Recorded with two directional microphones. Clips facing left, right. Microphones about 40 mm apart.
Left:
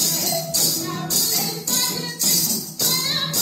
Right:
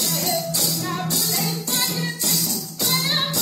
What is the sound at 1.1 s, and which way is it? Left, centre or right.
Music, right.